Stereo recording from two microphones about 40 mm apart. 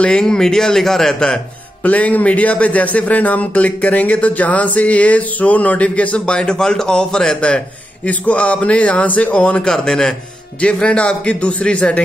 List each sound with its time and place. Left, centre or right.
0.0 s speech: left
1.8 s a man's voice: left
6.3 s speech: centre
7.3 s a man's voice: left
9.7 s a man's voice: centre; by 12.0 s left